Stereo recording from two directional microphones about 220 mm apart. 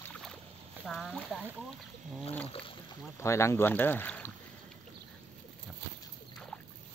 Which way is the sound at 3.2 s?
10° left (ahead or behind).